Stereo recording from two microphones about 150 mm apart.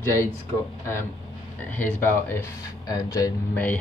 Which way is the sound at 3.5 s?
10° left (ahead or behind).